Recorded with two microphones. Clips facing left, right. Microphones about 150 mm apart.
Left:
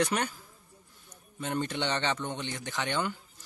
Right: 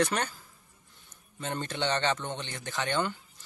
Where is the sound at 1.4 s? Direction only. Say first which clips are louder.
Left 1 dB; 10° left (ahead or behind).